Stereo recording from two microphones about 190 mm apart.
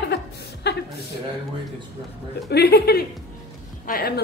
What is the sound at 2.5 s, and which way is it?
A woman's voice, 55° left (ahead or behind).